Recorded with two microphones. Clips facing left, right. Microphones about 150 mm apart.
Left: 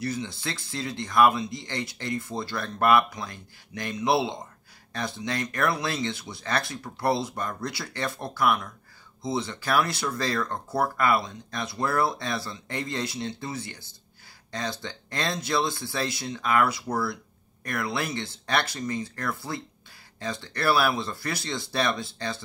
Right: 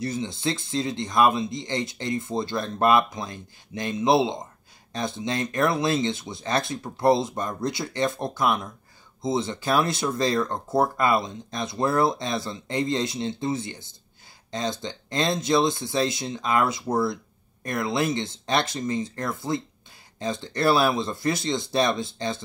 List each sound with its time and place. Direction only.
0.0 s speech: 20° right (ahead or behind)